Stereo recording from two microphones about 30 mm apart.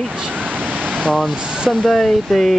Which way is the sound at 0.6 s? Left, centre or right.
Right.